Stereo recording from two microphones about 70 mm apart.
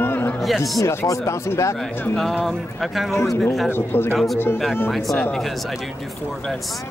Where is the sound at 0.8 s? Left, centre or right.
Left.